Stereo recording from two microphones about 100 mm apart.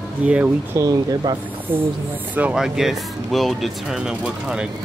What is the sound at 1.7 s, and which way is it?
Speech, 20° right (ahead or behind).